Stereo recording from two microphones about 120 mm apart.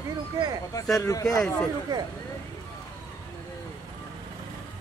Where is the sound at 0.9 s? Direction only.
25° left (ahead or behind).